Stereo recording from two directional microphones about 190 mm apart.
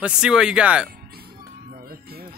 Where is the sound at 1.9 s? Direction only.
55° right (ahead or behind).